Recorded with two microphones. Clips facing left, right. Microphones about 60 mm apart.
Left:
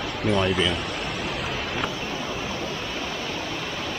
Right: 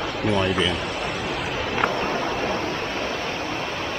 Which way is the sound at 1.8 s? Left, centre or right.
Right.